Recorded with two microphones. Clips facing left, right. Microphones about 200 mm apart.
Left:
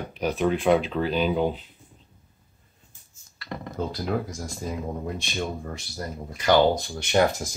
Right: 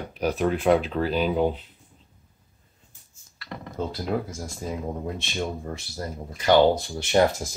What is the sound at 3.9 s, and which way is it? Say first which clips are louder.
Speech: right 1 dB; 25° right (ahead or behind).